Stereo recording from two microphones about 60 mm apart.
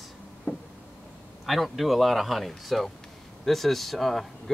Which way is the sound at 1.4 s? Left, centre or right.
Centre.